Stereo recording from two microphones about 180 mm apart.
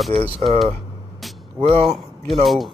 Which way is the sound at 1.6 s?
35° right (ahead or behind).